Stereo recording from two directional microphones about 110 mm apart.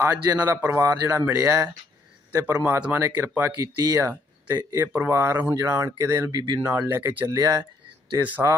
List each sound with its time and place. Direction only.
0.0 s a man's voice: 20° right (ahead or behind)
0.7 s speech: 30° right (ahead or behind)
4.1 s a sound: 20° right (ahead or behind)
4.6 s speech: 20° right (ahead or behind)